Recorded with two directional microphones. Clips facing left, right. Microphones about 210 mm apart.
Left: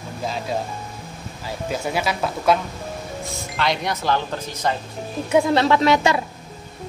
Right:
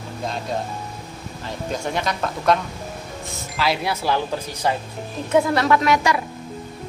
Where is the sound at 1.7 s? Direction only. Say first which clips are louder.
Left 1 dB; 5° left (ahead or behind); by 4.7 s 10° right (ahead or behind).